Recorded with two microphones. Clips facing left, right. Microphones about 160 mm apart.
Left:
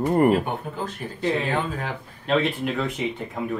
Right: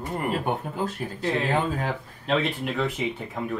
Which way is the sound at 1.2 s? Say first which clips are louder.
Left 1 dB; centre (ahead or behind).